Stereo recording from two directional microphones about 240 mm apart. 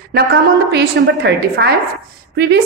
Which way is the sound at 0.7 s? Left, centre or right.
Right.